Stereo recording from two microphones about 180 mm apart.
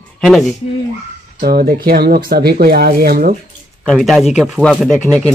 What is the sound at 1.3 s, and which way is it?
Speech, 55° right (ahead or behind).